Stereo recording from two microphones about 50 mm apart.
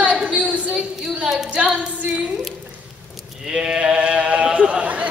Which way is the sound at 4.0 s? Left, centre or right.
Right.